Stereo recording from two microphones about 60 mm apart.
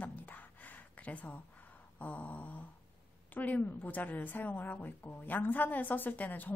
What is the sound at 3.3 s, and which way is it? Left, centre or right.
A woman's voice, left.